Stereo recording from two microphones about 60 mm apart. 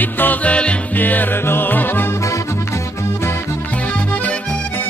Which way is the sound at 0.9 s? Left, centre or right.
Left.